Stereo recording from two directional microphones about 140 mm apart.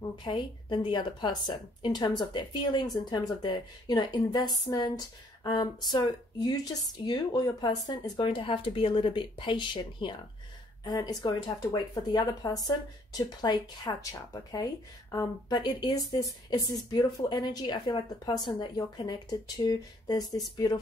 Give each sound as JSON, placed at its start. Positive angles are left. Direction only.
{"t": 0.2, "sound": "a woman's voice", "side_deg": 35}